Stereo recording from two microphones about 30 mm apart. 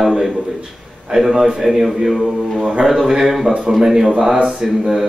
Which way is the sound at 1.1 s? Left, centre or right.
Centre.